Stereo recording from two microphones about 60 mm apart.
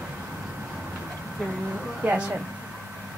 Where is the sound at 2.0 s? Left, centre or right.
Right.